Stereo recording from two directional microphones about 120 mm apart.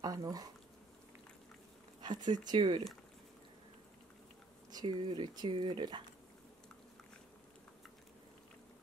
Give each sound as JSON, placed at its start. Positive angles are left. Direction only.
{"t": 0.0, "sound": "speech", "side_deg": -30}
{"t": 2.0, "sound": "speech", "side_deg": -35}
{"t": 4.6, "sound": "speech", "side_deg": -40}